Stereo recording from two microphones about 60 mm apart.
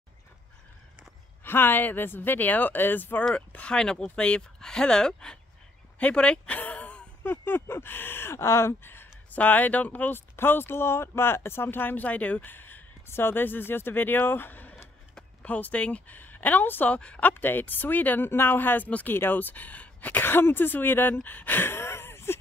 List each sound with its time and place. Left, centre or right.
1.4 s speech: left
3.3 s speech: centre
5.9 s a sound: centre
7.2 s speech: left
9.3 s speech: left
10.3 s speech: left
16.9 s speech: left
21.2 s a sound: left